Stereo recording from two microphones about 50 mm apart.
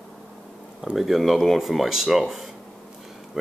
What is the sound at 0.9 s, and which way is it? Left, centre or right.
Speech, centre.